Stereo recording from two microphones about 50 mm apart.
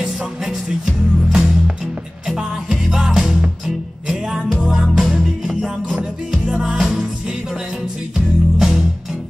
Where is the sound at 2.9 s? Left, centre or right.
Centre.